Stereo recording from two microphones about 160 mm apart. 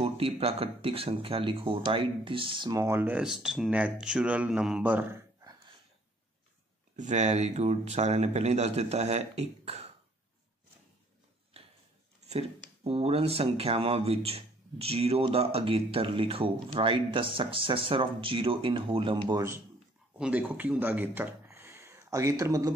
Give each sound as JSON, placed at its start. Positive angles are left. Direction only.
{"t": 0.0, "sound": "speech", "side_deg": -35}
{"t": 2.7, "sound": "speech", "side_deg": -15}
{"t": 7.0, "sound": "speech", "side_deg": -45}
{"t": 12.3, "sound": "speech", "side_deg": -40}
{"t": 20.2, "sound": "speech", "side_deg": -5}